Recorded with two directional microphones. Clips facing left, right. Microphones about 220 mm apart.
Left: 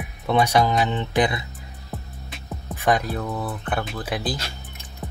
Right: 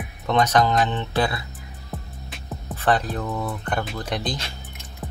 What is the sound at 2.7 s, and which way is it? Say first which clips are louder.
Speech: even; 10° left (ahead or behind).